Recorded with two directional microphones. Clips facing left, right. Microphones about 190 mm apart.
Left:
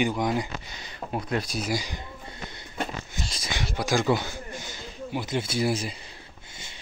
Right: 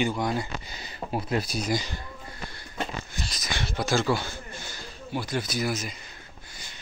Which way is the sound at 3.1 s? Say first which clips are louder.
Even; 25° left (ahead or behind).